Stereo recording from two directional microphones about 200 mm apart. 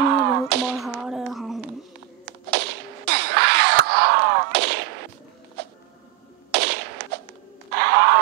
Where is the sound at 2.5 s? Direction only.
55° right (ahead or behind).